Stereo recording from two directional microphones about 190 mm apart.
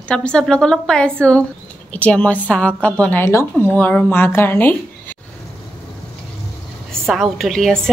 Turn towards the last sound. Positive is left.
turn(degrees=0)  # may be behind; listen again after turning